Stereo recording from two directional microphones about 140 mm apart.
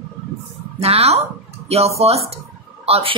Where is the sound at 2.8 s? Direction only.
45° right (ahead or behind).